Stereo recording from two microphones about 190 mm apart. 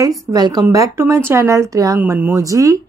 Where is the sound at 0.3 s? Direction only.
20° right (ahead or behind).